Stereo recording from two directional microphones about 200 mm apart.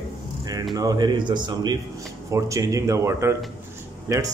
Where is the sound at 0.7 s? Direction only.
20° right (ahead or behind).